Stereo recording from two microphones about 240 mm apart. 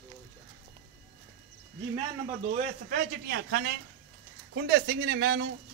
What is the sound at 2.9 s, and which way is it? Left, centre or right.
Speech, right.